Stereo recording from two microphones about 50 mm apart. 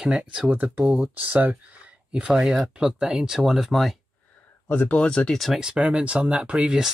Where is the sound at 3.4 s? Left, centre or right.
Centre.